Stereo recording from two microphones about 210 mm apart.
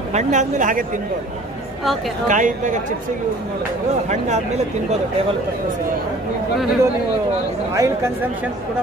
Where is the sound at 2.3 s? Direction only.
35° right (ahead or behind).